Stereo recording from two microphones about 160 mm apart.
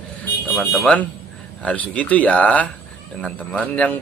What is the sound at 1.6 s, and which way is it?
Speech, 10° left (ahead or behind).